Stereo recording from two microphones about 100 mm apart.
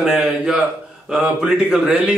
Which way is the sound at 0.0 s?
5° right (ahead or behind).